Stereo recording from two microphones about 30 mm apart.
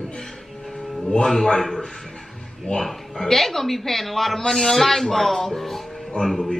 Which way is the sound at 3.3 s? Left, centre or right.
Centre.